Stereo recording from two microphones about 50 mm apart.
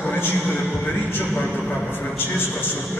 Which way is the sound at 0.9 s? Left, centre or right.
Left.